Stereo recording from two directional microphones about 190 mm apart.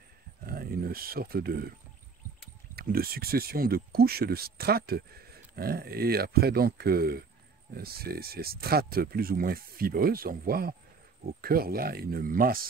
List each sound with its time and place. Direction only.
0.5 s speech: 50° right (ahead or behind)
2.7 s speech: 55° right (ahead or behind)